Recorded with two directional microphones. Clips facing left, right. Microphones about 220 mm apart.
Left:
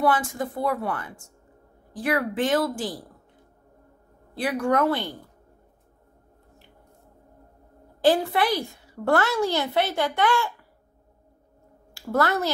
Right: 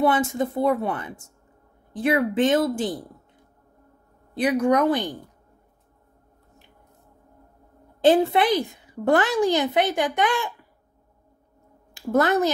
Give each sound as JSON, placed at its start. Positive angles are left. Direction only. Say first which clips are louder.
{"t": 0.0, "sound": "speech", "louder": "right 3 dB", "side_deg": -25}
{"t": 4.4, "sound": "a woman's voice", "louder": "right 3 dB", "side_deg": -20}
{"t": 8.0, "sound": "a woman's voice", "louder": "right 3 dB", "side_deg": -20}
{"t": 11.9, "sound": "a woman's voice", "louder": "right 4 dB", "side_deg": -20}